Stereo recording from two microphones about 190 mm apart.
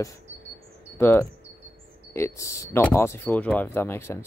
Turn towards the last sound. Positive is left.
turn(degrees=15)  # may be behind; listen again after turning